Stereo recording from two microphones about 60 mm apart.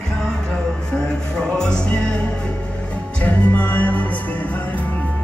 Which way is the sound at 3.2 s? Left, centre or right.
Left.